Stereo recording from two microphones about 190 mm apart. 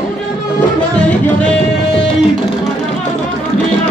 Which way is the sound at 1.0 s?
5° left (ahead or behind).